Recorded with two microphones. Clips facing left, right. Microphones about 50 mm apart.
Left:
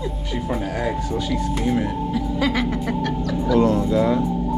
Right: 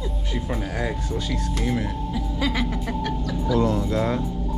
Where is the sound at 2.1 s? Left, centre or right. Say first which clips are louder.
Left 4 dB; left.